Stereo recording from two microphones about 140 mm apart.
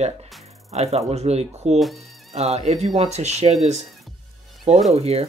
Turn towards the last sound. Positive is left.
turn(degrees=-45)  # may be behind; listen again after turning